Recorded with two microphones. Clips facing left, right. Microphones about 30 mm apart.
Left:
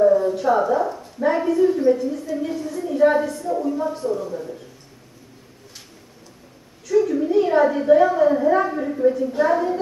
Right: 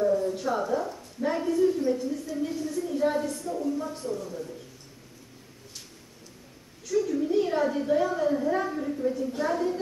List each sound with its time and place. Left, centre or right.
0.0 s a sound: left
0.3 s a woman's voice: left
6.9 s a woman's voice: left
9.0 s a woman's voice: left